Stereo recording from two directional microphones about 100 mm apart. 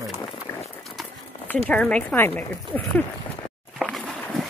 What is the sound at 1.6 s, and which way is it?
Speech, 10° left (ahead or behind).